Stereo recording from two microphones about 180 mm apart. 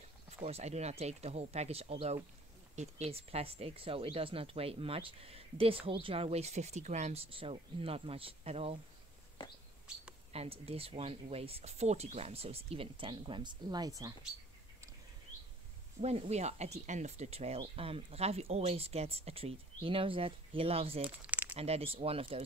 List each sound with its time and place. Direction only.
0.3 s speech: 35° right (ahead or behind)
10.3 s speech: 35° right (ahead or behind)
16.0 s speech: 35° right (ahead or behind)
21.3 s a sound: 10° right (ahead or behind)
21.5 s speech: 35° right (ahead or behind)